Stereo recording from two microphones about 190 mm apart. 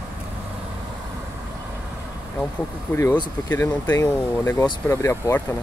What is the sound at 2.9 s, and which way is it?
Speech, 10° left (ahead or behind).